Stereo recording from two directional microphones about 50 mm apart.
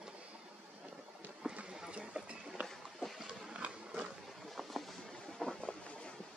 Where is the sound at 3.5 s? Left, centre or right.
Right.